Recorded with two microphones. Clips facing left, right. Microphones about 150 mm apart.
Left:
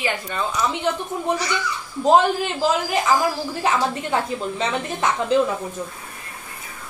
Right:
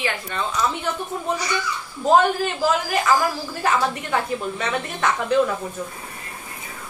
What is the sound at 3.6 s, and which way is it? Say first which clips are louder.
A woman's voice: even; 20° left (ahead or behind).